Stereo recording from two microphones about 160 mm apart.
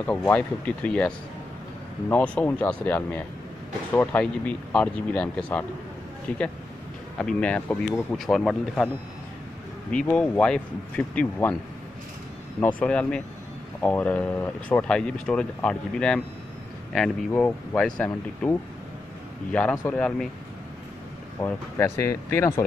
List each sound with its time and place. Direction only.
0.0 s speech: 10° left (ahead or behind)
7.2 s speech: 5° left (ahead or behind)
12.5 s speech: 10° left (ahead or behind)
21.4 s speech: 15° left (ahead or behind)